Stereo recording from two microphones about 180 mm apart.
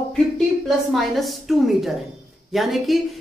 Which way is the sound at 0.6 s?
Centre (ahead or behind).